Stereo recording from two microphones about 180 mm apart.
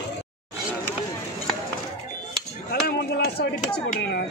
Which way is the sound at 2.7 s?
60° left (ahead or behind).